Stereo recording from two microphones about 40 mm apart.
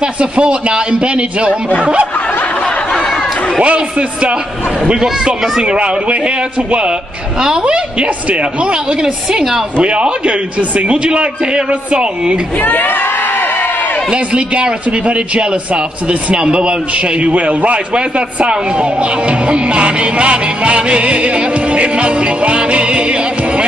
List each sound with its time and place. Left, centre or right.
0.0 s a man's voice: right
3.6 s a man's voice: right
5.0 s speech: centre
5.6 s a man's voice: right
7.3 s a man's voice: centre
9.8 s a man's voice: right
12.6 s crowd: left
14.1 s a man's voice: right